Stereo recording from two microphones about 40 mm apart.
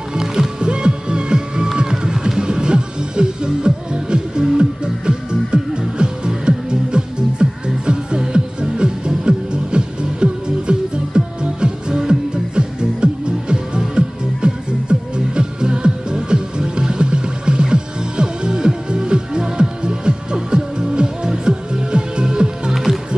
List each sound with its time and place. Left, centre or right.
0.1 s music: centre